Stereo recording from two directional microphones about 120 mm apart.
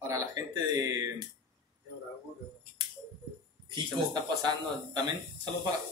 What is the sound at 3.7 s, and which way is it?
Speech, 35° right (ahead or behind).